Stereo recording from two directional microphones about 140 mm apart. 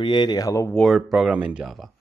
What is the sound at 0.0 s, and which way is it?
Speech, 35° left (ahead or behind).